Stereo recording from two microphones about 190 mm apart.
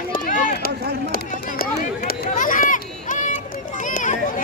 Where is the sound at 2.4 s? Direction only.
45° left (ahead or behind).